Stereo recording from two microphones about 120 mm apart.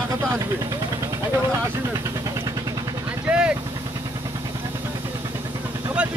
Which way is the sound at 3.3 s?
10° right (ahead or behind).